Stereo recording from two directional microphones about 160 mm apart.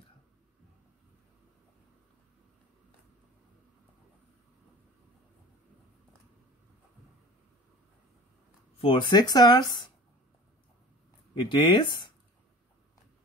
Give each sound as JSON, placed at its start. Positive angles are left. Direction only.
{"t": 8.8, "sound": "speech", "side_deg": 30}
{"t": 11.3, "sound": "speech", "side_deg": 30}